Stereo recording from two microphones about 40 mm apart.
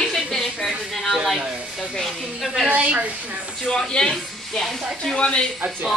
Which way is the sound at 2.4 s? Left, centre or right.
Centre.